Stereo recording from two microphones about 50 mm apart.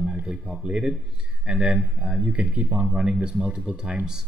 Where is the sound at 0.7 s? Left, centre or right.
Centre.